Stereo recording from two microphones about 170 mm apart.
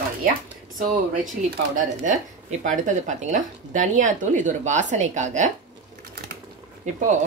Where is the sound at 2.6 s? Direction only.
45° right (ahead or behind).